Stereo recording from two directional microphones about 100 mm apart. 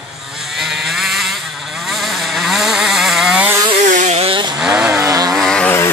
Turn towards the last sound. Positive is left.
turn(degrees=5)  # may be behind; listen again after turning